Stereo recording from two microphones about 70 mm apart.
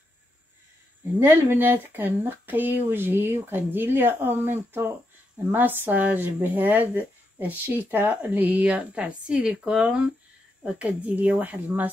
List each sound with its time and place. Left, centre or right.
1.2 s speech: right